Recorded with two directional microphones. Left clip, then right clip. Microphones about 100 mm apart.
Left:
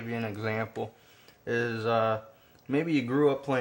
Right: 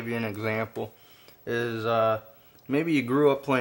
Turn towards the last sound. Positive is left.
turn(degrees=-90)